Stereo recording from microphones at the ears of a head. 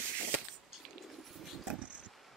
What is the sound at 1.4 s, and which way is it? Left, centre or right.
Dog, right.